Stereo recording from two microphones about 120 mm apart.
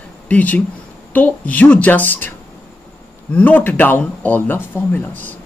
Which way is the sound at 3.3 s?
15° left (ahead or behind).